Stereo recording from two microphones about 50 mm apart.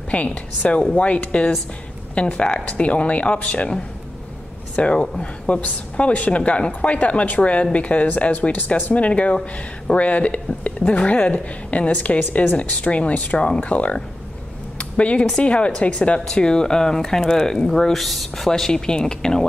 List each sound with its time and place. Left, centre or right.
0.1 s a woman's voice: left
8.9 s a woman's voice: left